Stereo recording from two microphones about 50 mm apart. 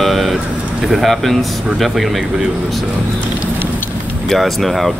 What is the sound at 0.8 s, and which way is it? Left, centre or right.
Speech, centre.